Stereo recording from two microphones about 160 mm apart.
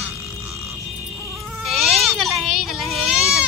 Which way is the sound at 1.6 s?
Centre (ahead or behind).